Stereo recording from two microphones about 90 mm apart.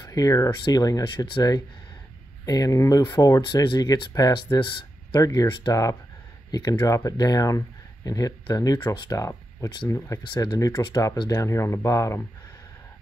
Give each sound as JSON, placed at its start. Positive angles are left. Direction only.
{"t": 0.0, "sound": "speech", "side_deg": 40}
{"t": 1.0, "sound": "speech", "side_deg": 55}
{"t": 3.4, "sound": "speech", "side_deg": 55}
{"t": 4.6, "sound": "a sound", "side_deg": 55}
{"t": 5.2, "sound": "speech", "side_deg": 40}
{"t": 9.2, "sound": "a sound", "side_deg": 35}
{"t": 9.8, "sound": "speech", "side_deg": 35}
{"t": 10.2, "sound": "speech", "side_deg": 50}
{"t": 11.2, "sound": "speech", "side_deg": 35}